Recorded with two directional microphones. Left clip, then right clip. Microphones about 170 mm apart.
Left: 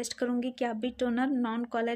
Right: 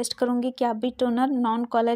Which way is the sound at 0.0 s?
25° right (ahead or behind).